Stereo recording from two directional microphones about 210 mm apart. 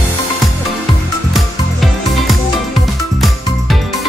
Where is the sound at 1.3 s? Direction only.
Centre (ahead or behind).